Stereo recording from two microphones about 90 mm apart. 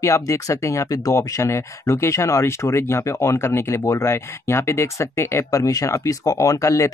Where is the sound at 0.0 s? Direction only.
35° left (ahead or behind).